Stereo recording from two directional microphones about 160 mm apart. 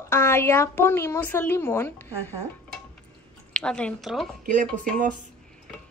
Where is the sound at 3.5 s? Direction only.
5° left (ahead or behind).